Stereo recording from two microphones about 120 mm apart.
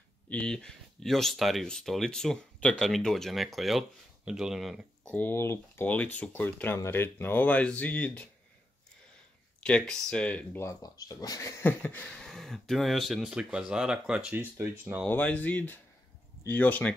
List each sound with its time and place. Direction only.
0.3 s speech: 10° left (ahead or behind)
5.1 s speech: 15° left (ahead or behind)
9.6 s speech: 10° left (ahead or behind)
10.6 s speech: 30° left (ahead or behind)
11.6 s speech: 15° left (ahead or behind); by 14.3 s 5° right (ahead or behind)
14.6 s speech: 15° right (ahead or behind)
15.0 s speech: 15° left (ahead or behind)